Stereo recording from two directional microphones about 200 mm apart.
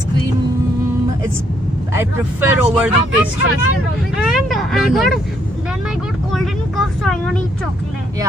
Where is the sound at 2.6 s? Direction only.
5° right (ahead or behind).